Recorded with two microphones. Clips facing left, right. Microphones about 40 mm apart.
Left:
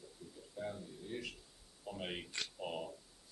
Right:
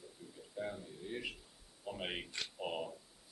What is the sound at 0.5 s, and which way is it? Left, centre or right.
A man's voice, centre.